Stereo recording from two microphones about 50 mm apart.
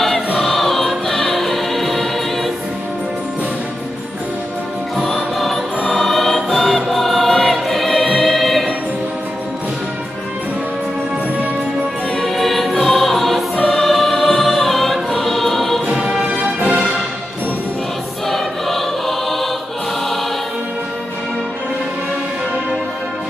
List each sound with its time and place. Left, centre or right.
0.4 s choir: centre
4.9 s music: centre
5.9 s choir: centre
12.3 s music: centre
13.7 s choir: centre
15.9 s music: centre
18.3 s choir: centre